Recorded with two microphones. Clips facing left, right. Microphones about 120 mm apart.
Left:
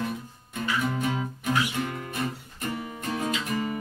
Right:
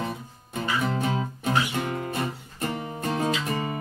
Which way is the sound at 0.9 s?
30° right (ahead or behind).